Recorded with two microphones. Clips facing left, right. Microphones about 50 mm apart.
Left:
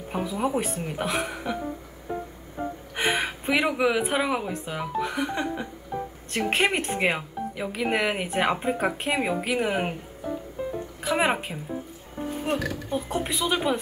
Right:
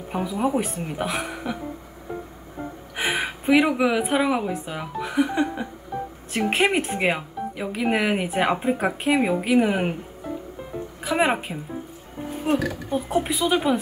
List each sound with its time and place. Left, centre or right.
0.1 s speech: centre
3.0 s speech: centre
11.1 s speech: centre